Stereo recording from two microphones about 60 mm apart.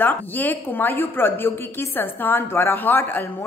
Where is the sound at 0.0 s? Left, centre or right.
Left.